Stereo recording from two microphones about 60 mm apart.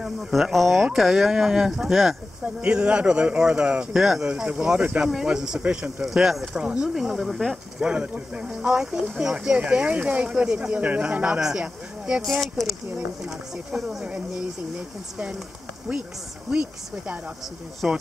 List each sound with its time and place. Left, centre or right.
0.0 s speech: centre
2.4 s speech: right
3.9 s speech: centre
4.2 s speech: centre
7.9 s speech: centre
11.2 s speech: centre
12.3 s speech: centre
14.0 s speech: centre
16.4 s speech: centre